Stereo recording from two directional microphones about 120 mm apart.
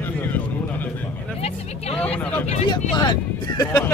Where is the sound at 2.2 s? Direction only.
15° left (ahead or behind).